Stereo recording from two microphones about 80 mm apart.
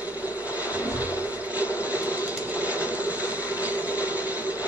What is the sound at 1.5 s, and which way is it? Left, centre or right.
Train, centre.